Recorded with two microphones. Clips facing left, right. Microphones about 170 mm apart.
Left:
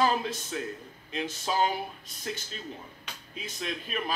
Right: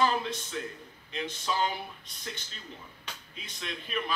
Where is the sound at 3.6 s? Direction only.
40° left (ahead or behind).